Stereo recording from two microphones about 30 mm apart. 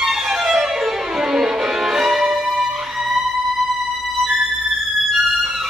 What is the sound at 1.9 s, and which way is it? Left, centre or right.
Music, centre.